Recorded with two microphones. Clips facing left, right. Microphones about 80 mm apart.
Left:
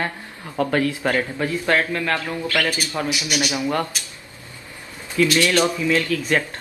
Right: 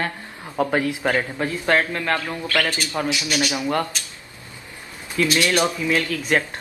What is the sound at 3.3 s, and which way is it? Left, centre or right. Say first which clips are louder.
Speech: even; centre.